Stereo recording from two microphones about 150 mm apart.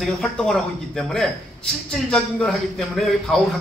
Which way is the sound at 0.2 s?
5° left (ahead or behind).